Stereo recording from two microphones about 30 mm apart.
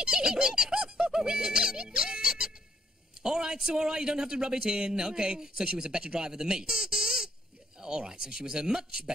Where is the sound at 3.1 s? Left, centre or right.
Right.